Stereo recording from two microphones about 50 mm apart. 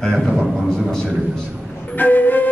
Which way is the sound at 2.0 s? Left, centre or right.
Left.